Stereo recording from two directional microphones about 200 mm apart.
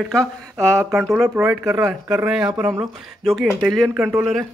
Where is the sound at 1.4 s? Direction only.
10° right (ahead or behind).